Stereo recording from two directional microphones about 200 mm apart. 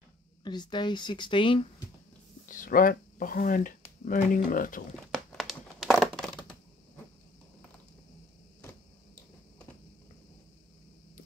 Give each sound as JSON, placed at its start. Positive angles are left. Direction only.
{"t": 0.4, "sound": "speech", "side_deg": 20}
{"t": 2.4, "sound": "speech", "side_deg": 40}
{"t": 5.1, "sound": "crumpling", "side_deg": 0}